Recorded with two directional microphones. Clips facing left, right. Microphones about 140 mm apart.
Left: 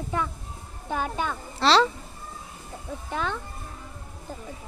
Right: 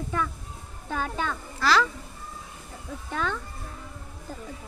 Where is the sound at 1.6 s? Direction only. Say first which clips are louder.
Left 3 dB; 30° left (ahead or behind).